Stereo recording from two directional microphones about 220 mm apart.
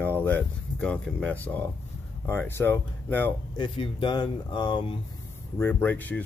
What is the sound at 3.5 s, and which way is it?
Speech, 25° left (ahead or behind).